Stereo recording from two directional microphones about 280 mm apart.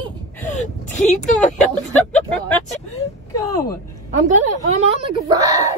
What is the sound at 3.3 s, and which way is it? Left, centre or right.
Speech, centre.